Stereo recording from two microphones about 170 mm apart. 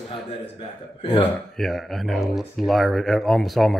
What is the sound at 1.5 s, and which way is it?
Speech, centre (ahead or behind).